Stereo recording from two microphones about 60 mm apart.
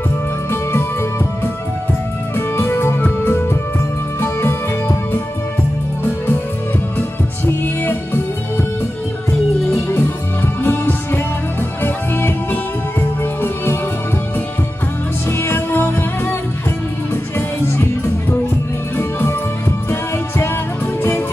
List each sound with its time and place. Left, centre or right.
0.5 s music: left
2.3 s music: left
7.6 s music: left
9.7 s music: left
15.2 s music: left